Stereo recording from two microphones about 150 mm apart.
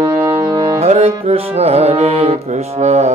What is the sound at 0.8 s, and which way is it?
Music, 45° right (ahead or behind).